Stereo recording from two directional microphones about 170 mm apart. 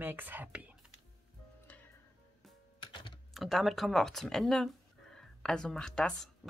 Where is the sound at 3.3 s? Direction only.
Centre (ahead or behind).